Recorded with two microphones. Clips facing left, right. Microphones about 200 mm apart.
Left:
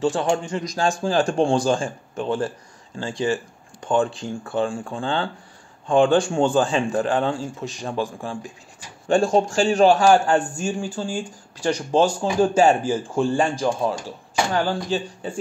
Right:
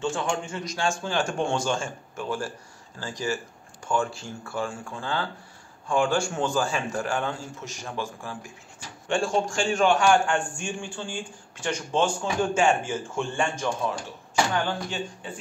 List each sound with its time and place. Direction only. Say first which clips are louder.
0.0 s a man's voice: left 7 dB; 35° left (ahead or behind)
8.0 s speech: left 7 dB; 15° left (ahead or behind)
9.0 s a man's voice: left 7 dB; 35° left (ahead or behind)